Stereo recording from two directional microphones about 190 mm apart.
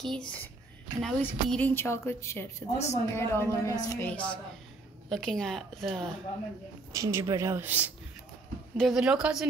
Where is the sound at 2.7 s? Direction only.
35° left (ahead or behind).